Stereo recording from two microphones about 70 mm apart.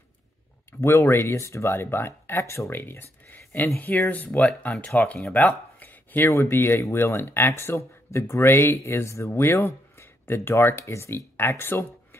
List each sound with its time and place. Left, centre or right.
0.7 s speech: left
2.7 s speech: left
5.8 s a sound: left
6.2 s speech: left